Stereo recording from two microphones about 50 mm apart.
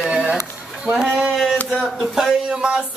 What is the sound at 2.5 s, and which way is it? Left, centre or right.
Speech, centre.